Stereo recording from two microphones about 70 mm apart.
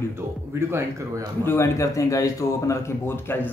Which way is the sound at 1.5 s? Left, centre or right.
Left.